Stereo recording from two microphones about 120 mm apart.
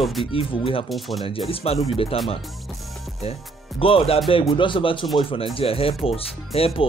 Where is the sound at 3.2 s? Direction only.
55° left (ahead or behind).